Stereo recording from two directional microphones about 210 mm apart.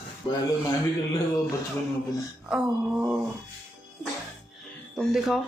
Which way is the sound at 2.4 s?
5° right (ahead or behind).